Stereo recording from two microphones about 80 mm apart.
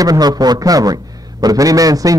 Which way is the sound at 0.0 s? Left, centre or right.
Right.